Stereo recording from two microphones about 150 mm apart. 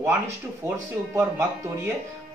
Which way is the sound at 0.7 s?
20° right (ahead or behind).